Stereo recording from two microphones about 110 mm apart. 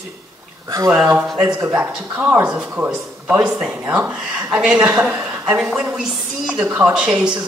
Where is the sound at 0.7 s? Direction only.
35° right (ahead or behind).